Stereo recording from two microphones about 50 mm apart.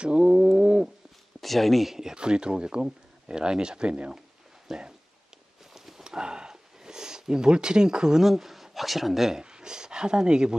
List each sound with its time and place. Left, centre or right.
0.0 s bird: centre
1.4 s speech: centre
2.1 s speech: centre
5.7 s horse: centre
6.0 s a sound: centre
9.4 s speech: centre